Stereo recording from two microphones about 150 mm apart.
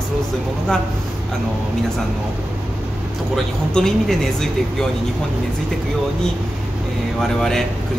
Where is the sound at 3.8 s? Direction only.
5° left (ahead or behind).